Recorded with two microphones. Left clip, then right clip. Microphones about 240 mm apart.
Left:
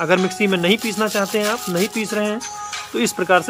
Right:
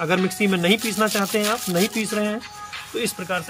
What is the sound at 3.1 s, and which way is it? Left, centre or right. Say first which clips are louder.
Speech: left 11 dB; left.